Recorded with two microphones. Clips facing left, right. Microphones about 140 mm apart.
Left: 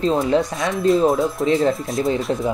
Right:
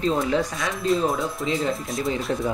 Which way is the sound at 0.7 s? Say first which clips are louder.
Left 7 dB; centre (ahead or behind).